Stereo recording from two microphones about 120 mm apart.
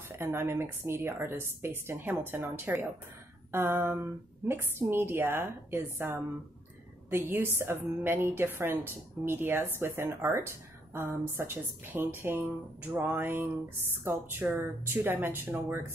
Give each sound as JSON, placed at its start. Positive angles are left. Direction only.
{"t": 0.2, "sound": "a woman's voice", "side_deg": -20}